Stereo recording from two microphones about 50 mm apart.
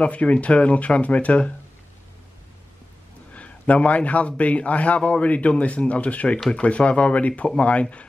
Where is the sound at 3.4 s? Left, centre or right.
Left.